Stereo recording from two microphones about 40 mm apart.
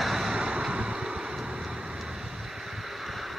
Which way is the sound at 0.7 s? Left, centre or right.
Right.